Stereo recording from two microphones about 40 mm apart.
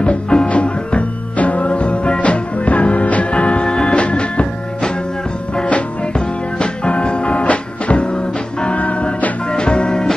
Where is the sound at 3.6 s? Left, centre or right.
Centre.